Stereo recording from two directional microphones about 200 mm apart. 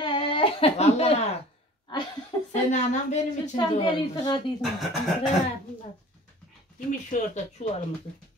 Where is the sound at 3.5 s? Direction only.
20° left (ahead or behind).